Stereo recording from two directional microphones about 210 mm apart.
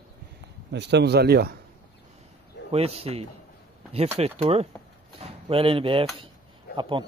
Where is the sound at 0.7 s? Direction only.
55° right (ahead or behind).